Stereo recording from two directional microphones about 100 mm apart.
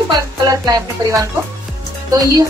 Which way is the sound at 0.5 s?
35° right (ahead or behind).